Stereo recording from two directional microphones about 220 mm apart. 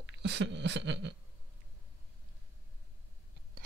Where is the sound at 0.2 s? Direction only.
50° right (ahead or behind).